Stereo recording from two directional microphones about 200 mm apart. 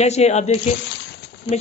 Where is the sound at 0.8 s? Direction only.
60° left (ahead or behind).